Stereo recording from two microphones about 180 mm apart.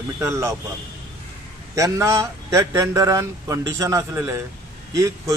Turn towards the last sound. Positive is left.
turn(degrees=-20)  # may be behind; listen again after turning